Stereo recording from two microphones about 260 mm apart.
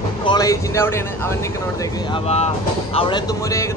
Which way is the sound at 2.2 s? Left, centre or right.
Left.